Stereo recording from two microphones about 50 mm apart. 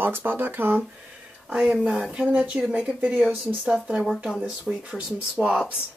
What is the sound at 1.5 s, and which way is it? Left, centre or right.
Speech, centre.